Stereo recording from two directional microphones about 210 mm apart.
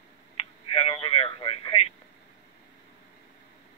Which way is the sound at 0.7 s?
25° left (ahead or behind).